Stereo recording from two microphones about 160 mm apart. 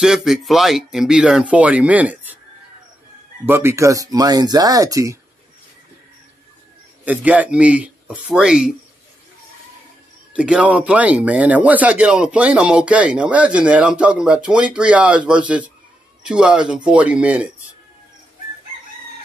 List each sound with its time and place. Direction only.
0.0 s speech: centre (ahead or behind)
3.4 s speech: 15° right (ahead or behind)
7.1 s speech: 10° right (ahead or behind)
10.3 s speech: 5° right (ahead or behind)